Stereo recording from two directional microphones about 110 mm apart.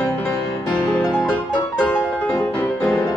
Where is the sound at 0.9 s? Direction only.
15° left (ahead or behind).